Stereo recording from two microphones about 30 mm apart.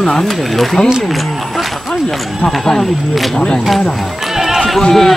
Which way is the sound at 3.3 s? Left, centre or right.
Left.